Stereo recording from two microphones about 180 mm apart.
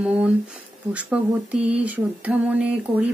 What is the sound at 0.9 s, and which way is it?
Speech, 5° right (ahead or behind).